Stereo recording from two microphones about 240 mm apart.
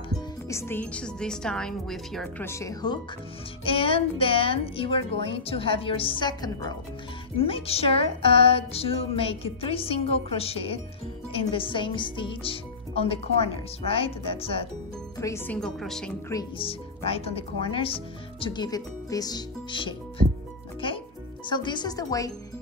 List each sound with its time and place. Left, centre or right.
0.1 s speech: centre
15.1 s speech: centre
16.3 s speech: centre
21.5 s speech: centre